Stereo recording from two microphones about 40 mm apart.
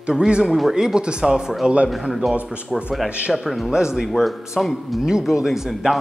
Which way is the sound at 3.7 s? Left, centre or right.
Centre.